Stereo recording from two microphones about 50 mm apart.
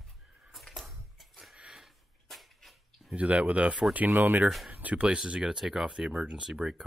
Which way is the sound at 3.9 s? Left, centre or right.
Right.